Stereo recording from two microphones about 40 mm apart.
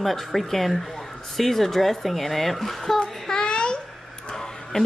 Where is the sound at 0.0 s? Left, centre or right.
Centre.